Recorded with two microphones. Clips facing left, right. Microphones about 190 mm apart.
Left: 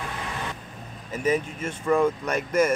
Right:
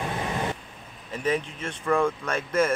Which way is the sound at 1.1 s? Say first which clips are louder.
Left 2 dB; 5° left (ahead or behind).